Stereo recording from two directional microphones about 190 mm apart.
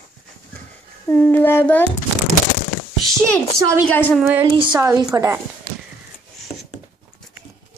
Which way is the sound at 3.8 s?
5° left (ahead or behind).